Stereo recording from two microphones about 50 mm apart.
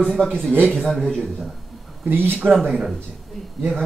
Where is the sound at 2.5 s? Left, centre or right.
Centre.